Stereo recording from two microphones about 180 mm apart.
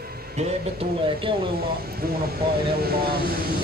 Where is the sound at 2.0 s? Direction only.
55° right (ahead or behind).